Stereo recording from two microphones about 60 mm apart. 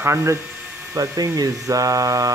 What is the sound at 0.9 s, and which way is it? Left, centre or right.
Speech, right.